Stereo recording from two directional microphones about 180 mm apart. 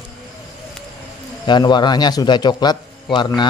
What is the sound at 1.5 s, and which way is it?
A man's voice, 25° left (ahead or behind).